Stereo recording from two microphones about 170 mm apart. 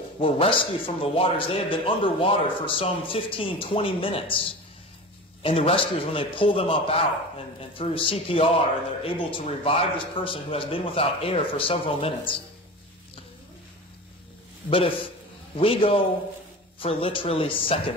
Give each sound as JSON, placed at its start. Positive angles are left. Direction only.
{"t": 0.2, "sound": "speech", "side_deg": 30}
{"t": 15.5, "sound": "speech", "side_deg": 35}